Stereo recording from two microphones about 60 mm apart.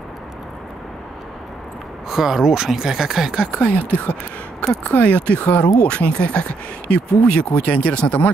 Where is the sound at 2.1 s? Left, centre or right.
Centre.